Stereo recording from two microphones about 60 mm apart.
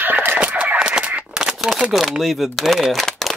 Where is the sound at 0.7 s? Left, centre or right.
Centre.